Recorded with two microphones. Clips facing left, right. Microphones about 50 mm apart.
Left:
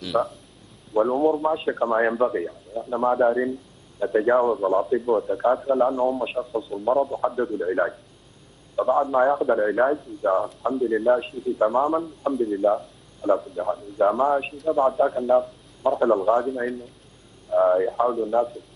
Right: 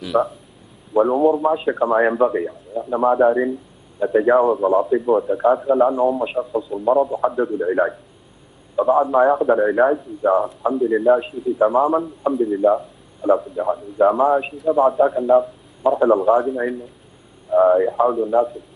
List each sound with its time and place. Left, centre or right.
0.0 s a man's voice: centre